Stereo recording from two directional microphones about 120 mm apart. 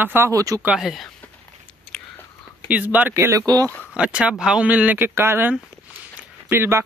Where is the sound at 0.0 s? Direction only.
20° right (ahead or behind).